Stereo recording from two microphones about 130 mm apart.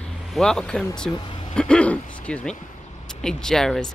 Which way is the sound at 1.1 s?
40° left (ahead or behind).